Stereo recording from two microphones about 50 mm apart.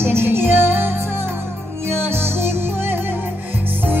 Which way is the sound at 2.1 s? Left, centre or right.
Right.